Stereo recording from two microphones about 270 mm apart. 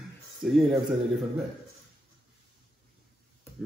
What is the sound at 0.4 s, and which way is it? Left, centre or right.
Speech, centre.